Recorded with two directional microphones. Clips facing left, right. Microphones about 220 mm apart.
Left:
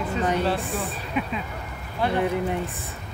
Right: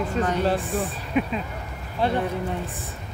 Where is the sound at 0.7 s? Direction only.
45° right (ahead or behind).